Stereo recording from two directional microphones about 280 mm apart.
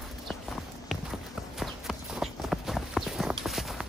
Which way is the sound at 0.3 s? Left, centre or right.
Centre.